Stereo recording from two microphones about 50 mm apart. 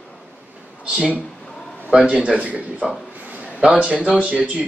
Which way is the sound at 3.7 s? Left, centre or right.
Right.